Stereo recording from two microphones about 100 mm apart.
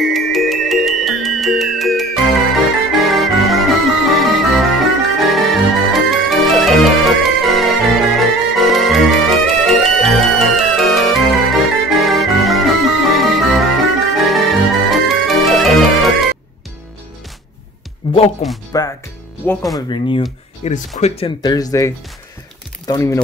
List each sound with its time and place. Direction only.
0.0 s music: centre (ahead or behind)
18.0 s music: 55° left (ahead or behind)
18.7 s music: 35° left (ahead or behind)
19.4 s speech: 15° left (ahead or behind)
19.9 s speech: 60° left (ahead or behind)
20.6 s speech: 90° left
21.4 s speech: 40° left (ahead or behind)